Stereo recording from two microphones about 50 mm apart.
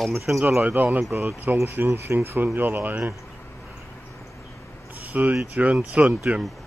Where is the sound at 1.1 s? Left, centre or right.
Right.